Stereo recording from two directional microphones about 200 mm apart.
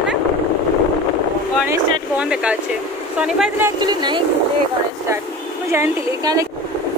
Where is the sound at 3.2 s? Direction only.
5° right (ahead or behind).